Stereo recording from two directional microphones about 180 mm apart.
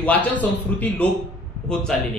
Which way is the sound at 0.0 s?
10° left (ahead or behind).